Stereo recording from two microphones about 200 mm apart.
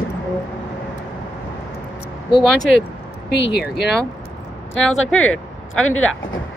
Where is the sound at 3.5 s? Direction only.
55° left (ahead or behind).